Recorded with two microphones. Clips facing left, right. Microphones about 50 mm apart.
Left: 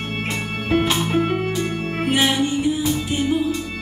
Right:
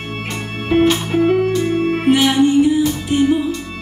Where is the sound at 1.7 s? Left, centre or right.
Centre.